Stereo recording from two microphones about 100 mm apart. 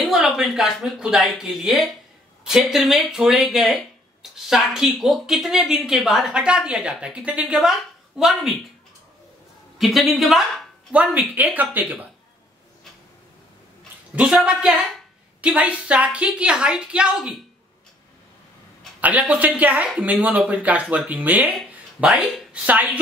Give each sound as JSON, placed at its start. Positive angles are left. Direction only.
{"t": 0.0, "sound": "speech", "side_deg": -5}
{"t": 9.8, "sound": "speech", "side_deg": 0}
{"t": 10.9, "sound": "a woman's voice", "side_deg": -15}
{"t": 14.1, "sound": "a woman's voice", "side_deg": -10}
{"t": 18.9, "sound": "a woman's voice", "side_deg": -15}
{"t": 21.5, "sound": "speech", "side_deg": -5}